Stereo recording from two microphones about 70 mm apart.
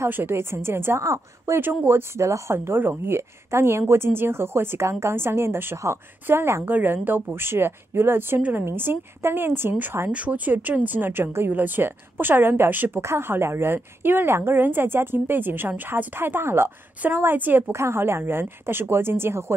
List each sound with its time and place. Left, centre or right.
0.1 s a woman's voice: right
1.6 s a woman's voice: right
2.2 s a woman's voice: right
8.4 s speech: right
8.6 s a woman's voice: right